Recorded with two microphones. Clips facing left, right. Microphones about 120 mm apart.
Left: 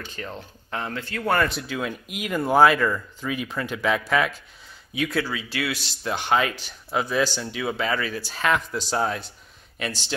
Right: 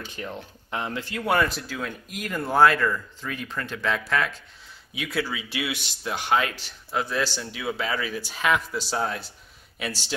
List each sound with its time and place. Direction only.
0.0 s speech: 15° right (ahead or behind)
1.2 s speech: 5° right (ahead or behind)
4.9 s speech: centre (ahead or behind)
5.3 s speech: 20° right (ahead or behind)
6.0 s speech: 5° right (ahead or behind)